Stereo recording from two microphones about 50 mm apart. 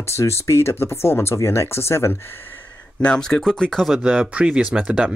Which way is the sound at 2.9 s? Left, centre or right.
Centre.